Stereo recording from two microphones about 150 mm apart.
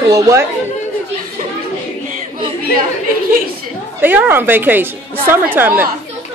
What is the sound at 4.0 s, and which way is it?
Speech, 10° right (ahead or behind).